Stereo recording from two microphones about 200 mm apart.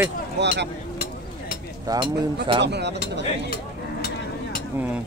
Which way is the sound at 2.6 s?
60° right (ahead or behind).